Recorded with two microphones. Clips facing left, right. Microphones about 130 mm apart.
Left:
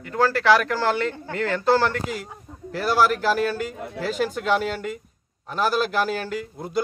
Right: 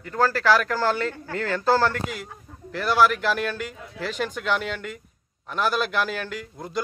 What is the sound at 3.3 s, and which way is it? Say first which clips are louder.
Speech: left 4 dB; 40° left (ahead or behind).